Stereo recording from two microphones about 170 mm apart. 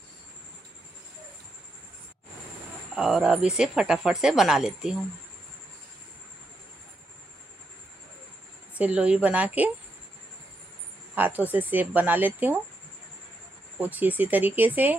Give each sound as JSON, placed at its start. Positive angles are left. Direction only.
{"t": 3.0, "sound": "speech", "side_deg": -5}
{"t": 8.7, "sound": "speech", "side_deg": -5}
{"t": 11.1, "sound": "speech", "side_deg": -10}
{"t": 13.7, "sound": "speech", "side_deg": -10}